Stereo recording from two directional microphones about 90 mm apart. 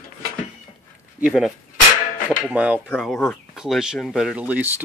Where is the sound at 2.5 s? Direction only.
15° right (ahead or behind).